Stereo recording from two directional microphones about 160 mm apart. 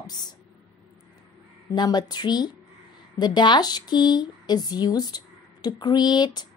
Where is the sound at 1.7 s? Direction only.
25° left (ahead or behind).